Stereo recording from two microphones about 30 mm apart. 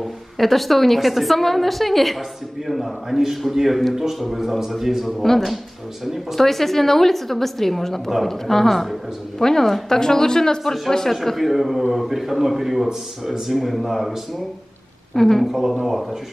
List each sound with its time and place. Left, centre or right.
0.4 s a woman's voice: centre
3.9 s a man's voice: centre
5.2 s a woman's voice: centre
6.0 s a man's voice: centre
6.4 s a woman's voice: centre
9.4 s a woman's voice: centre
11.3 s a man's voice: centre
15.1 s a woman's voice: centre
15.8 s a woman's voice: centre